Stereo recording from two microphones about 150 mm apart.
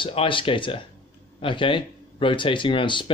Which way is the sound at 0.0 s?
35° left (ahead or behind).